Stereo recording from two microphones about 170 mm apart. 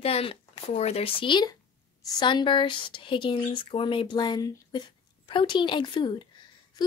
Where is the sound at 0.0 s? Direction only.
35° left (ahead or behind).